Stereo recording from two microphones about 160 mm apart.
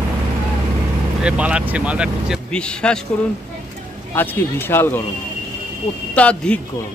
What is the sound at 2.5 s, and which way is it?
Speech, 5° left (ahead or behind).